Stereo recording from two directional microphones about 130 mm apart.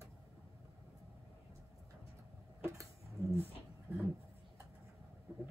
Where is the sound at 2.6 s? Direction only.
20° right (ahead or behind).